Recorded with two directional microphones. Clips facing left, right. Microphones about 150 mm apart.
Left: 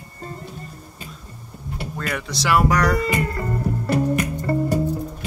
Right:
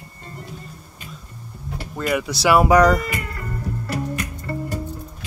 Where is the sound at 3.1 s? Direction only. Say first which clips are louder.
Left 7 dB; 30° left (ahead or behind).